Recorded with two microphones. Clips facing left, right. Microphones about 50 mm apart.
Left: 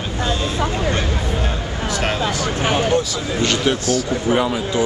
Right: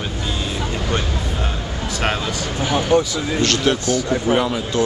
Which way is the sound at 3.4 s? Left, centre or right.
Centre.